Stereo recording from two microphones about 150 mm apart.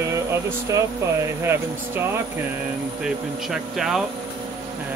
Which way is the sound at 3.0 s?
Centre (ahead or behind).